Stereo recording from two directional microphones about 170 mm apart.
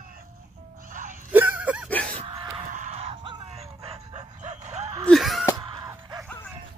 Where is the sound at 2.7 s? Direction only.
45° right (ahead or behind).